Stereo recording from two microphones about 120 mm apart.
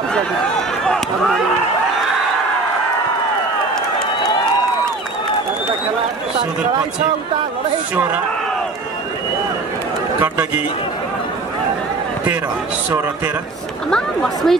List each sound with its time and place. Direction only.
0.1 s a sound: 5° left (ahead or behind)
7.9 s a man's voice: 15° right (ahead or behind)
10.2 s a man's voice: 15° right (ahead or behind)
13.8 s speech: 5° left (ahead or behind)